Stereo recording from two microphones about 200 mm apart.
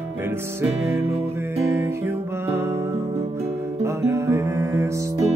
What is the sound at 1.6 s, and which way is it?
Music, 15° right (ahead or behind).